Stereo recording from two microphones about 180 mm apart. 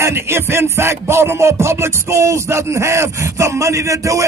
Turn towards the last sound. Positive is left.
turn(degrees=-15)  # may be behind; listen again after turning